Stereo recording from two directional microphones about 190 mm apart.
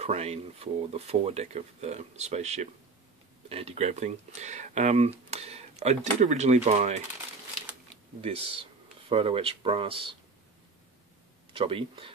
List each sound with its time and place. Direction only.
0.0 s speech: 35° right (ahead or behind)
8.2 s speech: 30° right (ahead or behind)
11.5 s speech: 30° right (ahead or behind)